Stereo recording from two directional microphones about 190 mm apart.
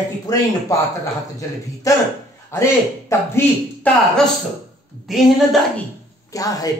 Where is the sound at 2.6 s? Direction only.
15° left (ahead or behind).